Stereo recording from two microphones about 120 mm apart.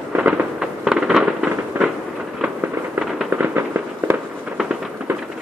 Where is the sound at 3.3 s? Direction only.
15° right (ahead or behind).